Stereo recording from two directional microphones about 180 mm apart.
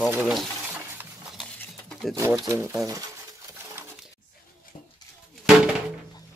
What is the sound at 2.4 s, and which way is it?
Speech, 15° right (ahead or behind).